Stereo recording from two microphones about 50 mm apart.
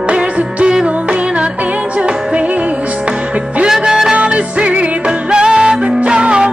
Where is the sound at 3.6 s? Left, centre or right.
Centre.